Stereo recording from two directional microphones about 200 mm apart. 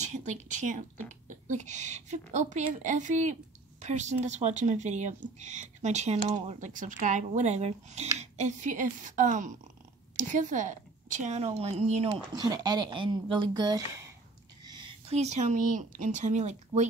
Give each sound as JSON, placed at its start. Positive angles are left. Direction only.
{"t": 0.0, "sound": "a woman's voice", "side_deg": -35}